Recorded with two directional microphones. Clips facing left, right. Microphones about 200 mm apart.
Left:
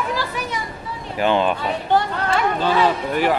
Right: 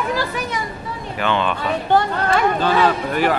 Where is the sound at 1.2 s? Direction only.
40° left (ahead or behind).